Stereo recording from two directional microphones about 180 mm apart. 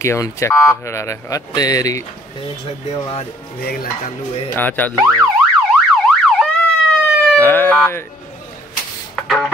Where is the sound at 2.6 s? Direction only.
30° left (ahead or behind).